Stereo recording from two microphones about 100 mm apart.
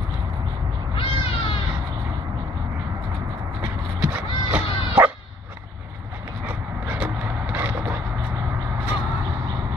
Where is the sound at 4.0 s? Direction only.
15° right (ahead or behind).